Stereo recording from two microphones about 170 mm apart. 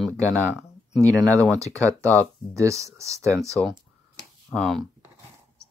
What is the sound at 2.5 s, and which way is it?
Speech, 20° right (ahead or behind).